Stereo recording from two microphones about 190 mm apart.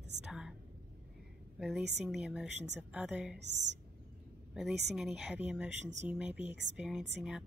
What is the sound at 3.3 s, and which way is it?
Speech, 65° right (ahead or behind).